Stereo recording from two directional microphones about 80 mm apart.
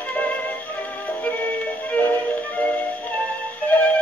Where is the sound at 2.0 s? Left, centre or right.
Left.